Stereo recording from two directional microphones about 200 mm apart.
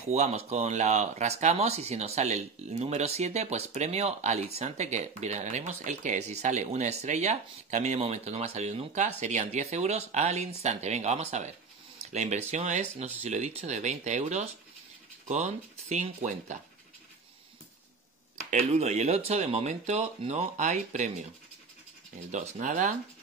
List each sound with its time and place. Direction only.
0.0 s speech: 35° right (ahead or behind)
18.4 s speech: 35° right (ahead or behind)
22.3 s speech: 40° right (ahead or behind)